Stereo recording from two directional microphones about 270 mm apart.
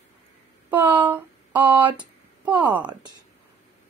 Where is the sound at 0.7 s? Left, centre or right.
Centre.